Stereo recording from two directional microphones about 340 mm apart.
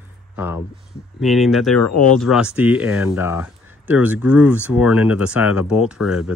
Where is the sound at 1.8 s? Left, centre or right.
Left.